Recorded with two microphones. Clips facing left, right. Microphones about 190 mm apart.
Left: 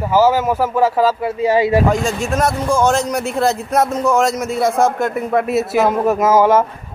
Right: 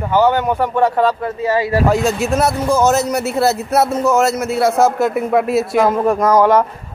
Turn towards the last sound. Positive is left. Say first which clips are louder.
# even
turn(degrees=5)  # may be behind; listen again after turning